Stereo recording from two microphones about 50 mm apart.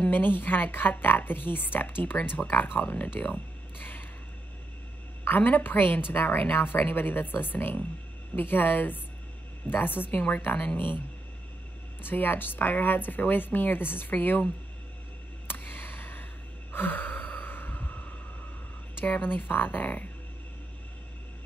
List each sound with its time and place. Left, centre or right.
0.1 s a woman's voice: left
5.2 s a woman's voice: left
12.0 s a woman's voice: left
15.4 s a sound: left
16.7 s sigh: left
19.0 s a woman's voice: left